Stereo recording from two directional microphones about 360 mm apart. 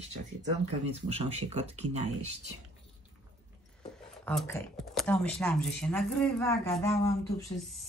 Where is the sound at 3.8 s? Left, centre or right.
Centre.